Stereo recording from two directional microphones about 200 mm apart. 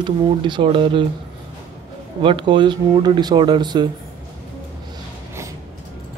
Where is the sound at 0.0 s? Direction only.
25° right (ahead or behind).